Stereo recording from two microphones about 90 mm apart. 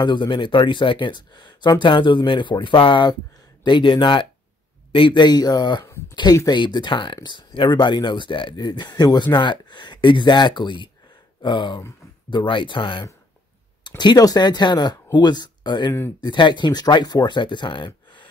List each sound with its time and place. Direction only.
0.0 s speech: 60° left (ahead or behind)
13.8 s speech: 55° left (ahead or behind)